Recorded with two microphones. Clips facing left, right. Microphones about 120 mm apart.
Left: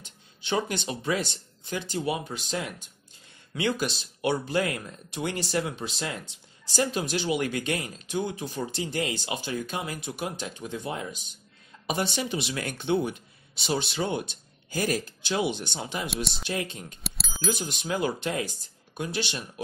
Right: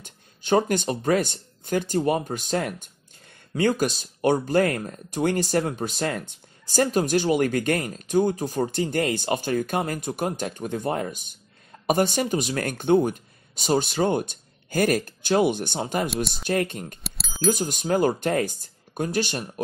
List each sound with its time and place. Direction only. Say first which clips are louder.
0.0 s speech: right 2 dB; 45° right (ahead or behind)
17.0 s bicycle bell: right 3 dB; centre (ahead or behind)
17.5 s speech: right 7 dB; 45° right (ahead or behind)